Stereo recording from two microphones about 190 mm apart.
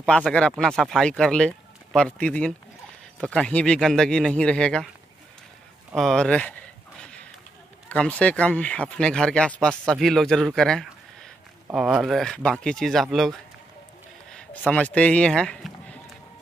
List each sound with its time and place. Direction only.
0.0 s speech: 5° left (ahead or behind)
5.9 s a sound: centre (ahead or behind)
7.9 s speech: 5° left (ahead or behind)